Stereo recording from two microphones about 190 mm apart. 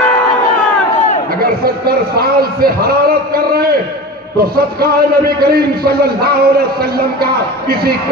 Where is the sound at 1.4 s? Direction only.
55° right (ahead or behind).